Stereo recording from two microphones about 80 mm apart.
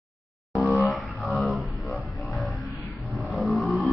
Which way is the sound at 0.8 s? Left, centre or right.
Centre.